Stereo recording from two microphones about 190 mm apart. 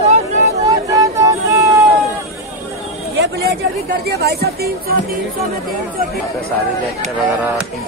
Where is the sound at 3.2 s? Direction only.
60° right (ahead or behind).